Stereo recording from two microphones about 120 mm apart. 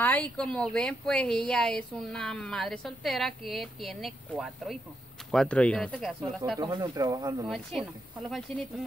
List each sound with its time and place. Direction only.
0.0 s a woman's voice: 15° left (ahead or behind)
5.3 s a woman's voice: 5° left (ahead or behind)
6.6 s speech: 35° right (ahead or behind)
7.4 s a woman's voice: centre (ahead or behind)